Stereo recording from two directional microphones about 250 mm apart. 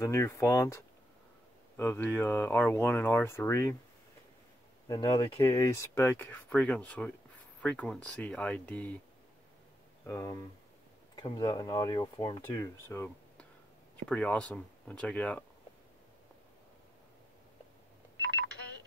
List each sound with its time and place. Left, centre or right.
0.0 s speech: centre
4.8 s speech: centre
10.0 s speech: centre